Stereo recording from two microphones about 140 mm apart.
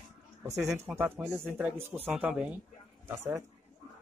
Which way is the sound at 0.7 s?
15° right (ahead or behind).